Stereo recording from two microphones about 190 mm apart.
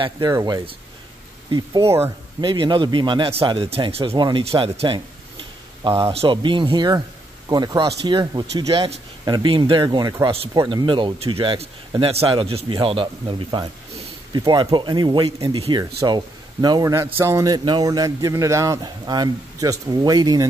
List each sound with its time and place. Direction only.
0.0 s a man's voice: 20° right (ahead or behind)
6.1 s a man's voice: 25° right (ahead or behind)
16.0 s a man's voice: 20° right (ahead or behind)